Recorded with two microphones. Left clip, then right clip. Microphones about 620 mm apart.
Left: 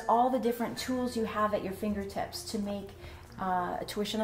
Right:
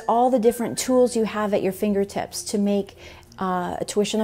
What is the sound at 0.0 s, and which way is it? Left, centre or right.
A woman's voice, right.